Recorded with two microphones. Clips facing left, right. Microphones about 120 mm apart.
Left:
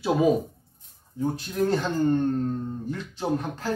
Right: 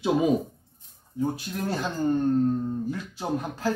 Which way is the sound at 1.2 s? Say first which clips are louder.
Left 3 dB; 10° right (ahead or behind).